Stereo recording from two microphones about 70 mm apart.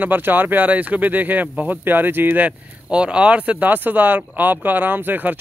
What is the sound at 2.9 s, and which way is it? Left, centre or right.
Speech, centre.